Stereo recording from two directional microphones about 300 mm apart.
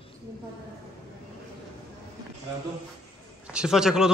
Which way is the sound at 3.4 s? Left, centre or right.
Centre.